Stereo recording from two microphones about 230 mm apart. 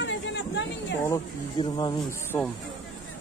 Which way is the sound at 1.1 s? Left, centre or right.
Centre.